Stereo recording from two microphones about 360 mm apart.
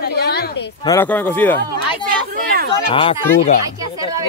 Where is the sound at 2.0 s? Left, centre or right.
Right.